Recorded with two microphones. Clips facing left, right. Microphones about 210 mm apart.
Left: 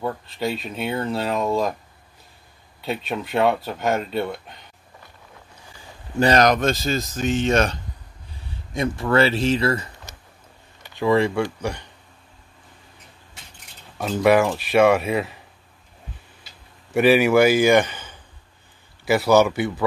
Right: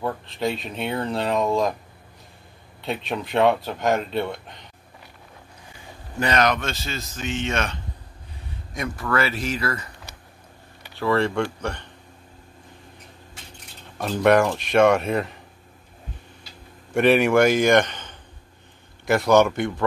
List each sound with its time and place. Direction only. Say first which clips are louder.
0.0 s speech: even; centre (ahead or behind)
2.8 s speech: left 1 dB; centre (ahead or behind)
6.1 s speech: left 5 dB; 35° left (ahead or behind)
8.7 s speech: left 5 dB; 25° left (ahead or behind)
11.0 s speech: left 3 dB; 15° left (ahead or behind)
13.9 s speech: left 1 dB; 5° left (ahead or behind)
16.9 s speech: left 1 dB; 5° left (ahead or behind)